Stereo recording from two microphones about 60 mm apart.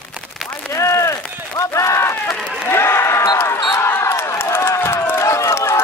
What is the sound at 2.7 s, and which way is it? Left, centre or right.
Speech, left.